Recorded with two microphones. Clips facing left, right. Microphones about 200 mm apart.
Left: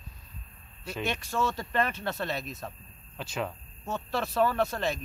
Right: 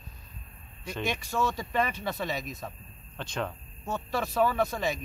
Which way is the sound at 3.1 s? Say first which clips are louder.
Even; 5° left (ahead or behind).